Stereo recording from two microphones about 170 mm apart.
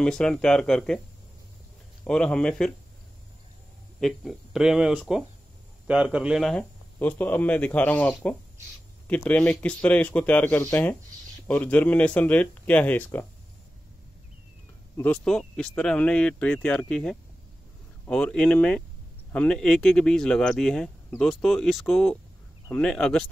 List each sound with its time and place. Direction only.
0.0 s speech: 5° left (ahead or behind)
2.0 s speech: 5° left (ahead or behind)
4.0 s speech: 5° right (ahead or behind)
15.0 s speech: 5° left (ahead or behind)